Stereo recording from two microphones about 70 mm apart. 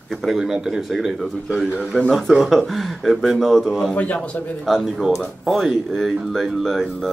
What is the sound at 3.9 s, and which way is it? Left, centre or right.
Speech, left.